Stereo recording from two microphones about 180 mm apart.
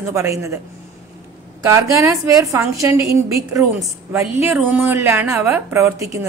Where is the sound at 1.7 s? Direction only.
15° right (ahead or behind).